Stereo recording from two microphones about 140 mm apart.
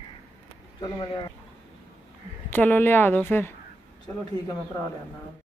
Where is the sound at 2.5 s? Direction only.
15° left (ahead or behind).